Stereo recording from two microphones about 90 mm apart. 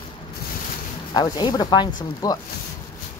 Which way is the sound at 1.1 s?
50° left (ahead or behind).